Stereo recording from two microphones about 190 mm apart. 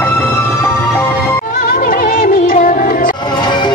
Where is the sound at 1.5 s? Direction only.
45° left (ahead or behind).